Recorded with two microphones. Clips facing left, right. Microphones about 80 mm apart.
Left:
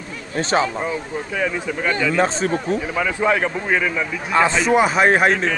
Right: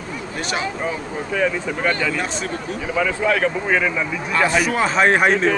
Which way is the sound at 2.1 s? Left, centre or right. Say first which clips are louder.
Left 6 dB; left.